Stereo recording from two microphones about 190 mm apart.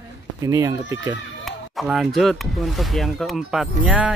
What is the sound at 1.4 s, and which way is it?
Speech, centre (ahead or behind).